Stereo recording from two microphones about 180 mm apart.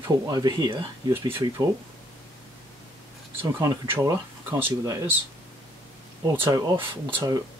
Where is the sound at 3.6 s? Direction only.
20° right (ahead or behind).